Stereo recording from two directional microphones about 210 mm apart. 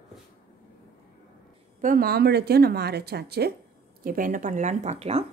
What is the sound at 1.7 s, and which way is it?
Speech, 40° right (ahead or behind).